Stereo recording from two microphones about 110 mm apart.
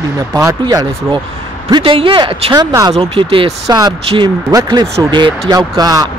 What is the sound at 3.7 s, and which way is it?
Speech, 35° right (ahead or behind).